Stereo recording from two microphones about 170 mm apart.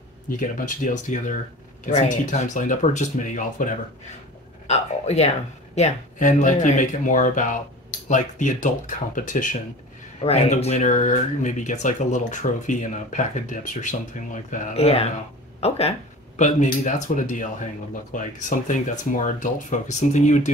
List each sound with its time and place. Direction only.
0.4 s speech: 50° left (ahead or behind)
4.6 s speech: 40° left (ahead or behind)
10.2 s speech: 40° left (ahead or behind)
16.3 s speech: 45° left (ahead or behind)